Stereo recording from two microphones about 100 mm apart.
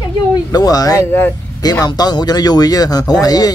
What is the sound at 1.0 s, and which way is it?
Speech, 20° left (ahead or behind).